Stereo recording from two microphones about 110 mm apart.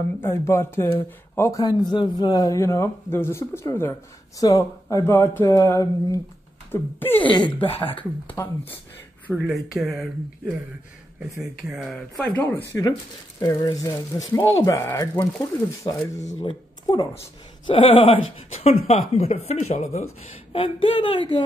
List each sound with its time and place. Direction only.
0.2 s speech: 25° left (ahead or behind)
1.6 s speech: 35° left (ahead or behind)
6.7 s speech: 20° left (ahead or behind)
7.2 s a woman's voice: 45° left (ahead or behind)
7.6 s speech: 60° left (ahead or behind)
8.4 s speech: 25° left (ahead or behind)
9.3 s speech: 5° right (ahead or behind)
12.3 s speech: 15° left (ahead or behind)
13.4 s a woman's voice: 35° left (ahead or behind)
17.6 s a woman's voice: 50° left (ahead or behind)
18.5 s speech: 70° left (ahead or behind); by 20.1 s 90° left
20.5 s a woman's voice: 50° left (ahead or behind)